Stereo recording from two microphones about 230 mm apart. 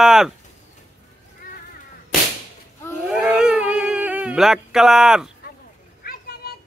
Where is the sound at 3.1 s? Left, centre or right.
Centre.